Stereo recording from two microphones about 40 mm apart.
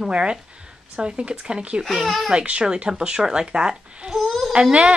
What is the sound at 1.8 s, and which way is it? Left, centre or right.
Speech, centre.